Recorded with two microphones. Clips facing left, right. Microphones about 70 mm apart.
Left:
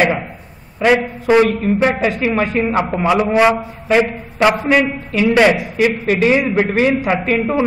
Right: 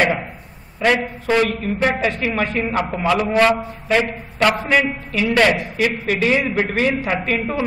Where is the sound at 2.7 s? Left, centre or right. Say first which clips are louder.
Left 4 dB; centre.